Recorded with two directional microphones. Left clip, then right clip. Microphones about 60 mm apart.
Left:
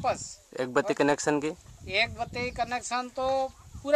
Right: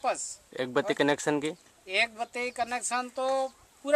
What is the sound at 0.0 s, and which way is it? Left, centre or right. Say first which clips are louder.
Speech: left 1 dB; centre.